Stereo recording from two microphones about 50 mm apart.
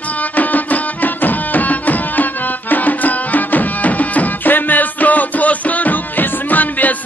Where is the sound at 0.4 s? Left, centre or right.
Left.